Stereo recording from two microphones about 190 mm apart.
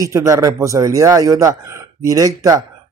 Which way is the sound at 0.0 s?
15° right (ahead or behind).